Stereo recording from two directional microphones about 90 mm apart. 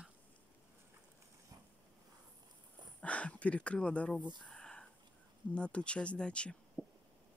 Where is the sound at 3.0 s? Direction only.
15° left (ahead or behind).